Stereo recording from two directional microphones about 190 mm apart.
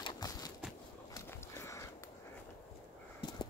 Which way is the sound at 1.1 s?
15° left (ahead or behind).